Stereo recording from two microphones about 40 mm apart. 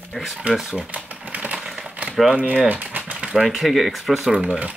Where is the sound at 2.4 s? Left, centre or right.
Right.